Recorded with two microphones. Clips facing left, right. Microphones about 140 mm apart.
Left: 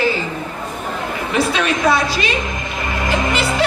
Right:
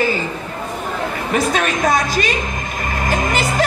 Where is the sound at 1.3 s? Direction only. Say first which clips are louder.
Even; 50° right (ahead or behind).